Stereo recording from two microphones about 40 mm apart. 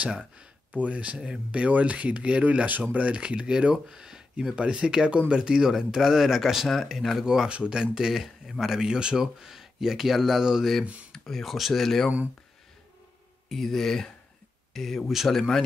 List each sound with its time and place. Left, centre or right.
0.0 s speech: right
3.2 s speech: right
7.4 s speech: right
8.1 s speech: centre
11.1 s speech: centre
11.4 s a man's voice: centre
11.7 s speech: centre
13.5 s a man's voice: centre